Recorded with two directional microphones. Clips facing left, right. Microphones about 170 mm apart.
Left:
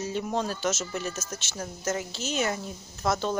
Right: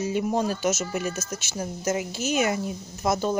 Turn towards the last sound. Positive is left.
turn(degrees=-15)  # may be behind; listen again after turning